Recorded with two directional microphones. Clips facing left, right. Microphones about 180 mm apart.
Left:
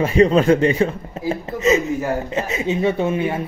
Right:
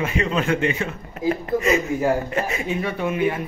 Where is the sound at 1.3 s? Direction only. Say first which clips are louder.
Left 2 dB; 20° left (ahead or behind).